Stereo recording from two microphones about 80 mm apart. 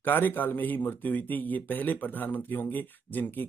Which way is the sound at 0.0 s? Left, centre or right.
Left.